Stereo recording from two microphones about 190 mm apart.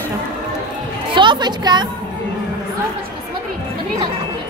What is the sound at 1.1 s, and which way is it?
Speech, 25° right (ahead or behind).